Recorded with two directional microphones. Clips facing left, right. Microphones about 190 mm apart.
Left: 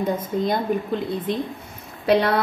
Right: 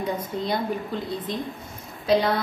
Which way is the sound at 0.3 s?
50° left (ahead or behind).